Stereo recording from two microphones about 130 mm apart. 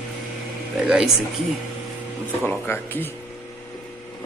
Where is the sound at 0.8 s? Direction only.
5° right (ahead or behind).